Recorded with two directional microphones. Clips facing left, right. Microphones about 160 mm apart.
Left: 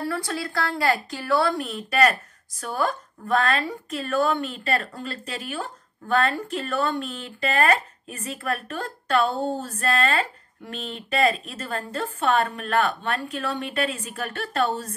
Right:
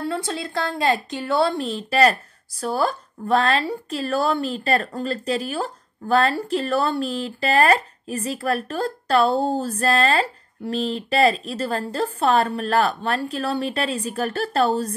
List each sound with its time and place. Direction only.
0.0 s a woman's voice: 25° right (ahead or behind)